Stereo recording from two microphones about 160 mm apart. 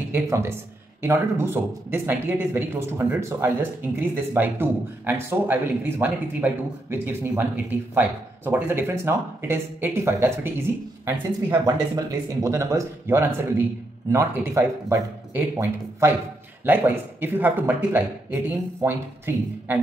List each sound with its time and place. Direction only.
0.1 s speech: 15° right (ahead or behind)
11.6 s speech: 25° right (ahead or behind)